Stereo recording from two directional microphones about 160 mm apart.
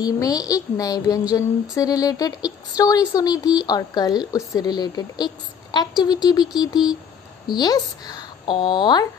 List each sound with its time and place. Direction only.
0.0 s speech: 25° left (ahead or behind)